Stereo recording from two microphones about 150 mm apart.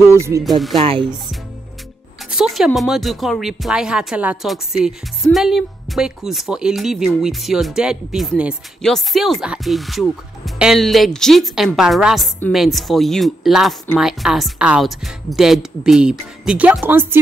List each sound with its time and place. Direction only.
0.1 s music: 20° right (ahead or behind)
0.4 s speech: centre (ahead or behind)
0.7 s speech: 35° right (ahead or behind)
2.3 s speech: 5° right (ahead or behind)